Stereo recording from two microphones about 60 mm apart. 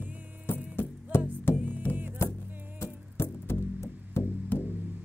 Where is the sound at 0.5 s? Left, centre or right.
Left.